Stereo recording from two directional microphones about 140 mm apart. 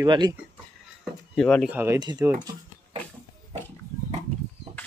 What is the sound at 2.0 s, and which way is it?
Speech, 30° right (ahead or behind).